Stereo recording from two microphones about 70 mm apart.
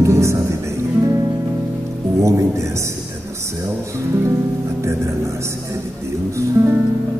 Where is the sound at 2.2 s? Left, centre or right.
Right.